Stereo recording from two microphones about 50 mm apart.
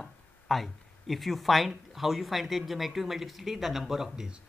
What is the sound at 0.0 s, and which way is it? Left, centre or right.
Speech, centre.